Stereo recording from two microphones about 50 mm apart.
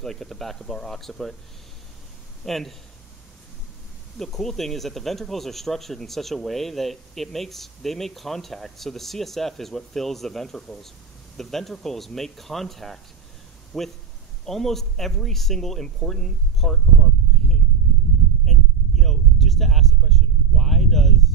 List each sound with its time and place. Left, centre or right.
0.0 s speech: centre
2.4 s speech: centre
4.2 s speech: centre
17.3 s a sound: centre